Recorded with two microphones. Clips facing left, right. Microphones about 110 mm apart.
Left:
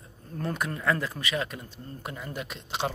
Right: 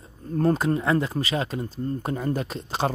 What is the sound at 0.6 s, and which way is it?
Speech, 25° right (ahead or behind).